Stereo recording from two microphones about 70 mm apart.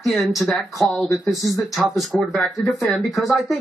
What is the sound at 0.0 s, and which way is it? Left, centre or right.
Speech, centre.